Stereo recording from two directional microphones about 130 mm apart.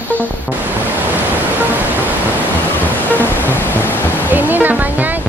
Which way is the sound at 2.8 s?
15° left (ahead or behind).